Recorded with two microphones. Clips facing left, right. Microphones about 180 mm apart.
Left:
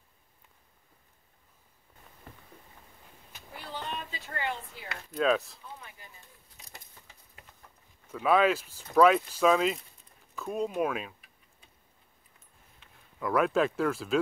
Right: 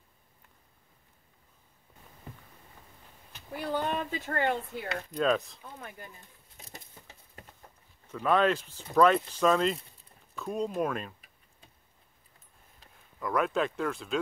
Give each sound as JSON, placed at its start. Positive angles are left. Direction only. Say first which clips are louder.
{"t": 3.7, "sound": "a sound", "louder": "right 7 dB", "side_deg": -50}
{"t": 5.1, "sound": "speech", "louder": "left 1 dB", "side_deg": 5}
{"t": 5.8, "sound": "speech", "louder": "right 7 dB", "side_deg": -50}
{"t": 8.1, "sound": "speech", "louder": "left 1 dB", "side_deg": 5}
{"t": 12.8, "sound": "a sound", "louder": "right 2 dB", "side_deg": -35}
{"t": 13.2, "sound": "speech", "louder": "left 3 dB", "side_deg": 5}